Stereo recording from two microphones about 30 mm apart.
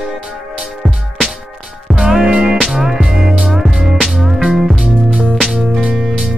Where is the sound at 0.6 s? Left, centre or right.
Centre.